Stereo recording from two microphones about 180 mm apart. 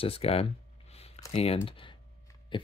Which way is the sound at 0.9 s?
35° left (ahead or behind).